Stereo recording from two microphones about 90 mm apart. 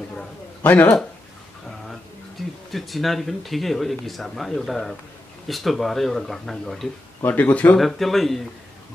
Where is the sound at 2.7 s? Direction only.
Centre (ahead or behind).